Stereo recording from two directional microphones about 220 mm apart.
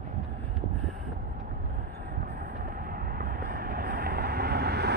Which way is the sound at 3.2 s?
45° right (ahead or behind).